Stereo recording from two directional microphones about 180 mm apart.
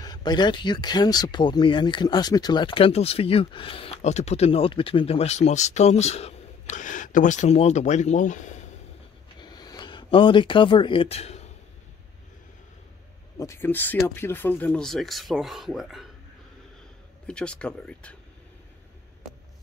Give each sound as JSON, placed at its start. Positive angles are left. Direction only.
{"t": 0.0, "sound": "speech", "side_deg": 25}
{"t": 9.4, "sound": "a sound", "side_deg": 20}
{"t": 13.4, "sound": "speech", "side_deg": 15}
{"t": 17.3, "sound": "speech", "side_deg": 5}